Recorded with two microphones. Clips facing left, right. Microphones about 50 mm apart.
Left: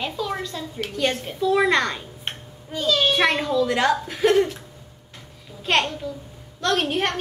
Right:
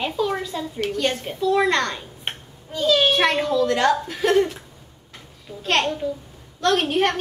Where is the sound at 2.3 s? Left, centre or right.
Centre.